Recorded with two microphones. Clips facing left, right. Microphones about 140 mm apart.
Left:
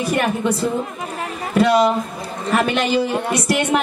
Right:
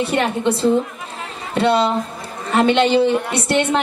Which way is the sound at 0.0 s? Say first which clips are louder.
Right 1 dB; 25° right (ahead or behind).